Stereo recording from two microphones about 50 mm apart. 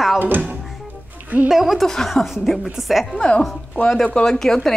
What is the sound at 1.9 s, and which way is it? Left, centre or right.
A woman's voice, centre.